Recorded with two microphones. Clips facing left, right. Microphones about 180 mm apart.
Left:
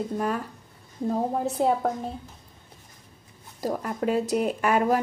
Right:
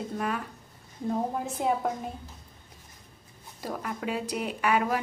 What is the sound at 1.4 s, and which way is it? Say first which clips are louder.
Speech: left 4 dB; 35° left (ahead or behind).